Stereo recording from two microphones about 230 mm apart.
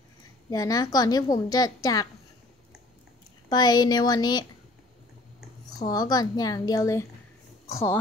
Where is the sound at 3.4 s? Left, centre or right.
Centre.